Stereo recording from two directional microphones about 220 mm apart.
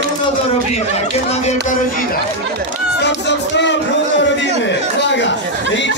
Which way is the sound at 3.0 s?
50° left (ahead or behind).